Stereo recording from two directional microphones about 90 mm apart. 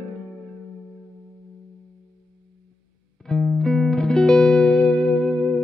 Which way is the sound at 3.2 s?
5° left (ahead or behind).